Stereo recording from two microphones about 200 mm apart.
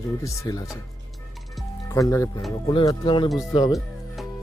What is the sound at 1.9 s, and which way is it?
Speech, 15° left (ahead or behind).